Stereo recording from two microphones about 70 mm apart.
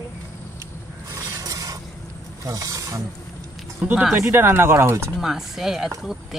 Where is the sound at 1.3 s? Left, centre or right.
Right.